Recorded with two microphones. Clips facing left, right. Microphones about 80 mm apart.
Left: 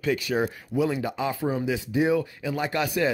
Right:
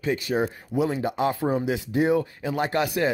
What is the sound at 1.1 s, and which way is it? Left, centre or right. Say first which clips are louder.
Speech: right 3 dB; right.